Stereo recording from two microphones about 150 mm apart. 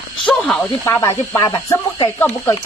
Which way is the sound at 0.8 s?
20° left (ahead or behind).